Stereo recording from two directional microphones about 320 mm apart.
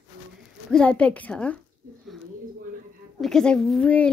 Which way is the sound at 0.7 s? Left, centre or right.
Centre.